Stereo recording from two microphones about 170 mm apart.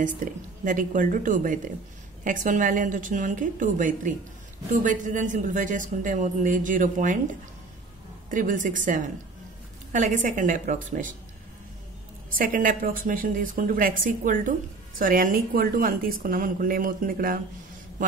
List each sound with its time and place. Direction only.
0.0 s a man's voice: 50° right (ahead or behind)
8.3 s a man's voice: 50° right (ahead or behind)
12.3 s a man's voice: 55° right (ahead or behind)